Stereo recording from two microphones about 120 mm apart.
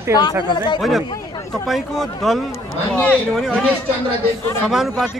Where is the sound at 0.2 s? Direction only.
40° left (ahead or behind).